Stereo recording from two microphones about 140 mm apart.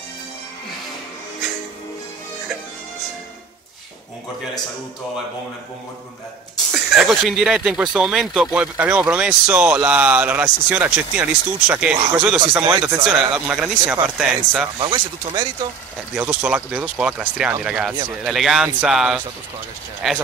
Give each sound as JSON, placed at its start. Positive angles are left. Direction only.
{"t": 6.7, "sound": "speech", "side_deg": 0}
{"t": 14.8, "sound": "speech", "side_deg": -35}
{"t": 16.2, "sound": "speech", "side_deg": -10}